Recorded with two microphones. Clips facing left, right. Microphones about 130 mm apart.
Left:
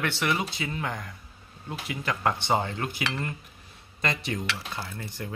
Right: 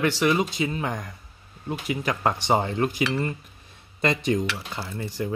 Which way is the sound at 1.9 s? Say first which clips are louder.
Right 3 dB; 15° right (ahead or behind).